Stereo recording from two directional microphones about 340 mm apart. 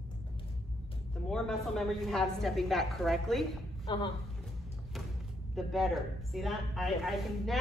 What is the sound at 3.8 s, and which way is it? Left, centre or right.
Speech, centre.